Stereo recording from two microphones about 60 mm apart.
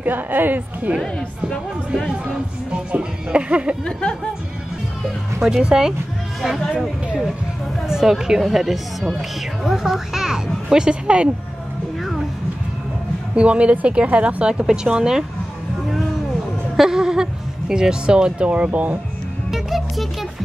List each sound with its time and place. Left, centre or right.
0.0 s speech: right
2.0 s speech: centre
3.8 s speech: centre
5.4 s a child's voice: centre
7.9 s a child's voice: centre
13.3 s a child's voice: centre
16.7 s speech: centre; by 18.9 s right
19.5 s music: centre